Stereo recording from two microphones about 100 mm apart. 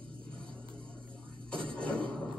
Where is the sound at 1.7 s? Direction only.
10° left (ahead or behind).